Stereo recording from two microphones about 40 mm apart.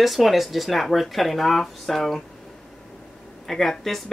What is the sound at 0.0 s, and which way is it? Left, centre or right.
Speech, centre.